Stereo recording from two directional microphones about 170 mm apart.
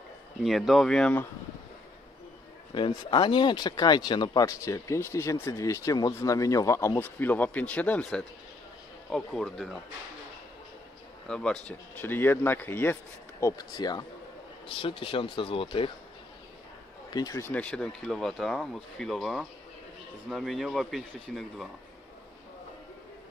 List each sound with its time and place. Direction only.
0.4 s speech: centre (ahead or behind)
2.7 s speech: 30° left (ahead or behind); by 9.8 s centre (ahead or behind)
11.2 s speech: 5° left (ahead or behind); by 15.9 s 30° left (ahead or behind)
17.1 s speech: 20° left (ahead or behind); by 21.6 s centre (ahead or behind)